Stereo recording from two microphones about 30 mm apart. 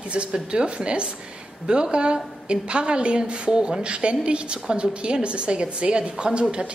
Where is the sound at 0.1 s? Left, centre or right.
Right.